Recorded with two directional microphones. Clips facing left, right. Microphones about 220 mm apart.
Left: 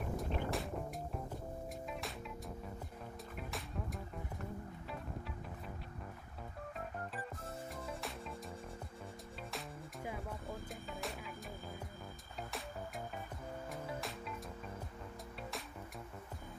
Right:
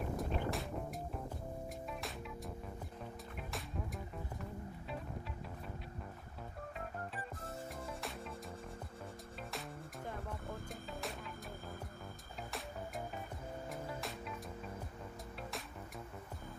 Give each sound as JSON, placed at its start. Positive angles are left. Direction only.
{"t": 0.2, "sound": "music", "side_deg": 0}
{"t": 9.5, "sound": "music", "side_deg": 0}